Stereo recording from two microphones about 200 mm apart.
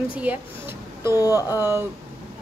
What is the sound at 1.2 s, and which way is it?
Speech, 15° left (ahead or behind).